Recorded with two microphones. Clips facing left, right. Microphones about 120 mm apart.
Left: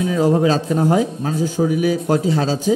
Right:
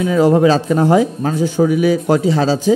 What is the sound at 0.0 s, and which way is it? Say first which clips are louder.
Speech: right 4 dB; 85° right.